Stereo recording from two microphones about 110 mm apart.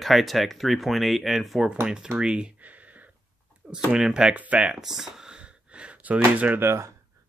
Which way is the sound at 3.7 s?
5° right (ahead or behind).